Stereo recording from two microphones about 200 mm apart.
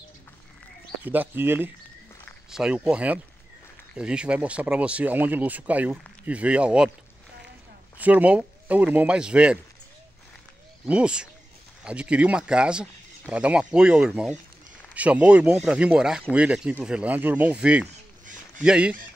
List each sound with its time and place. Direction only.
1.0 s speech: 10° right (ahead or behind)
8.0 s speech: 5° right (ahead or behind)
10.9 s speech: 5° right (ahead or behind)
17.8 s a sound: 40° right (ahead or behind)
18.6 s speech: 5° right (ahead or behind)